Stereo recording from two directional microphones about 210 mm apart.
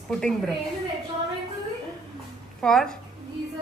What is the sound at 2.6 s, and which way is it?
Speech, centre (ahead or behind).